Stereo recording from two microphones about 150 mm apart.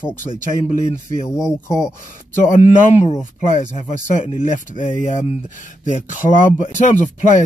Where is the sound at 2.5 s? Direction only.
50° left (ahead or behind).